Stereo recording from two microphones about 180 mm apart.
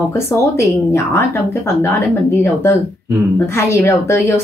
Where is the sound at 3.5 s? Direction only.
15° left (ahead or behind).